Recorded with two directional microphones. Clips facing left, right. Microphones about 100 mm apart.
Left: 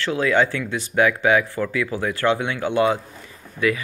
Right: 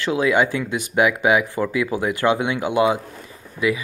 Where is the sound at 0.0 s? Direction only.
15° right (ahead or behind).